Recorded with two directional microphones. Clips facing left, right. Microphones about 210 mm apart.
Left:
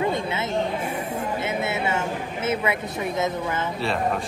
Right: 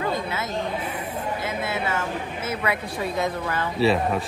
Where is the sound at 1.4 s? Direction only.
25° left (ahead or behind).